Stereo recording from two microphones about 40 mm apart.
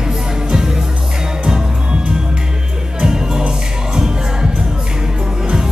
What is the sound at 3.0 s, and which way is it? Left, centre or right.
Music, centre.